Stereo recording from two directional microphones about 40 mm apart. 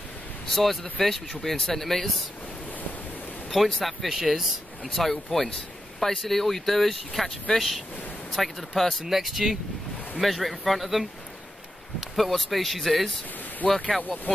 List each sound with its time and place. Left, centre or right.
0.5 s speech: centre
3.5 s speech: centre
13.6 s speech: centre
14.0 s speech: left